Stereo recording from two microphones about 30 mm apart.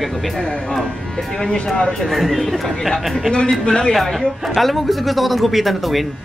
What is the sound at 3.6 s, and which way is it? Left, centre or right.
Speech, left.